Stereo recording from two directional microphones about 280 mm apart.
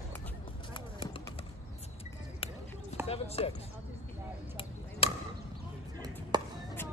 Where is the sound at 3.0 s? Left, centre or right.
Left.